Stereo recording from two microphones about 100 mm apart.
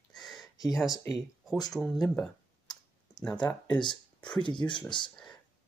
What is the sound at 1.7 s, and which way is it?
Speech, 5° left (ahead or behind).